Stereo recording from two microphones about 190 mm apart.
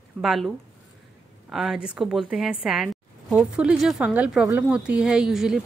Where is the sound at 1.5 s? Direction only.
Centre (ahead or behind).